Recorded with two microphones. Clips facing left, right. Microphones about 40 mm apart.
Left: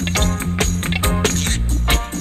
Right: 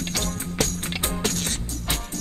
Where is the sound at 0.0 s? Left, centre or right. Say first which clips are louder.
Left 8 dB; left.